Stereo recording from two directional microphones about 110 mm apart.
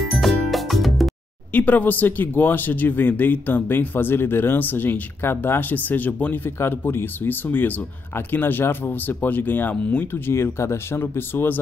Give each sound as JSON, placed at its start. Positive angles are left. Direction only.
{"t": 0.1, "sound": "music", "side_deg": 0}
{"t": 1.5, "sound": "speech", "side_deg": 15}